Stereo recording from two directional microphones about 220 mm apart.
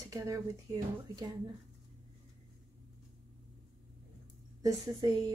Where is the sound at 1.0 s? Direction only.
20° right (ahead or behind).